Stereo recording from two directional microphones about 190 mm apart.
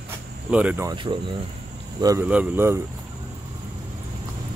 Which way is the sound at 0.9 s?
25° right (ahead or behind).